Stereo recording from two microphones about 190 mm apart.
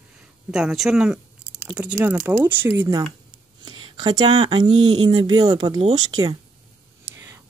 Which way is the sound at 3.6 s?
25° right (ahead or behind).